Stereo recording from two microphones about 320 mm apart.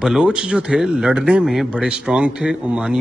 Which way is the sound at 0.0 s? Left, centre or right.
Centre.